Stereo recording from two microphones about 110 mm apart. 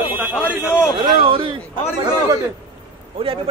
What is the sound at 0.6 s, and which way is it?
Speech, 20° left (ahead or behind).